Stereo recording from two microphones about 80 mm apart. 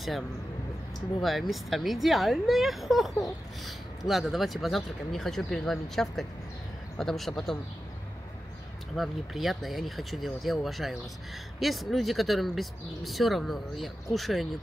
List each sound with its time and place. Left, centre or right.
1.2 s speech: centre
8.9 s speech: centre